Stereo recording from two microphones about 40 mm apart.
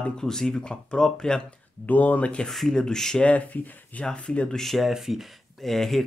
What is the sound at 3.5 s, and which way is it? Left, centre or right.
Speech, left.